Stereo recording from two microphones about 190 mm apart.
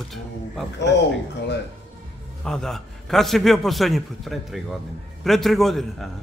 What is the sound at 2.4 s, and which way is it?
A man's voice, 5° left (ahead or behind).